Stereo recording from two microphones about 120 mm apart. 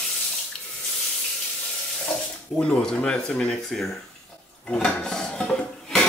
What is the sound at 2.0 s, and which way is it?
Speech, 5° left (ahead or behind).